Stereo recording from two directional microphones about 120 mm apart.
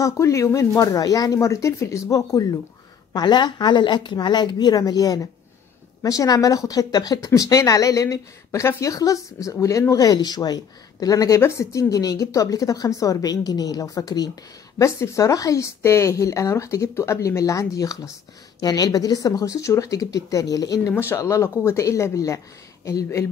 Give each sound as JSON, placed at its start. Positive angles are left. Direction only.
{"t": 0.0, "sound": "a woman's voice", "side_deg": 25}
{"t": 20.9, "sound": "speech", "side_deg": 20}